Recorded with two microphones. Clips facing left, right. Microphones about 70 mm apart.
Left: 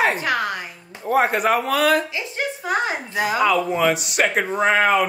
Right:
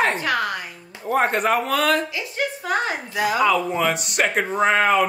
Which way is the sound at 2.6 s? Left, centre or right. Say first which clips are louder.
Left 3 dB; left.